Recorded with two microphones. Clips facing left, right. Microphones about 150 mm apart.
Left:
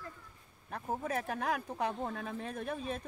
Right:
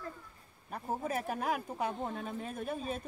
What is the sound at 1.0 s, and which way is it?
Speech, 5° right (ahead or behind).